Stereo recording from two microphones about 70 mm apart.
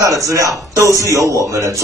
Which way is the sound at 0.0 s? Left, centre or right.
Right.